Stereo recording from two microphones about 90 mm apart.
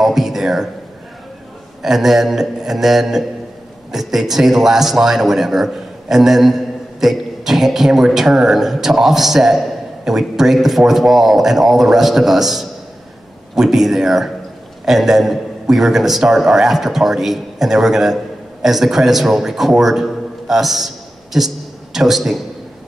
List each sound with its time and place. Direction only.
0.0 s a man's voice: centre (ahead or behind)
1.8 s a man's voice: 5° right (ahead or behind)